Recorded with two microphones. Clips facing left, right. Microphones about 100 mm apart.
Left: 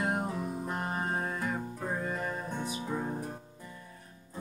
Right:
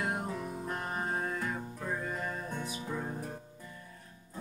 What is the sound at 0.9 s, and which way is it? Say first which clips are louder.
Music: left 1 dB; 10° left (ahead or behind).